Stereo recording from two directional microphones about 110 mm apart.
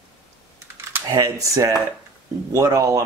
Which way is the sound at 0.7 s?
25° right (ahead or behind).